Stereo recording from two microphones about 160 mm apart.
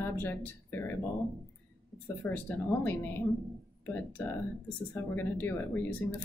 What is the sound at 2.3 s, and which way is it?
Speech, 10° left (ahead or behind).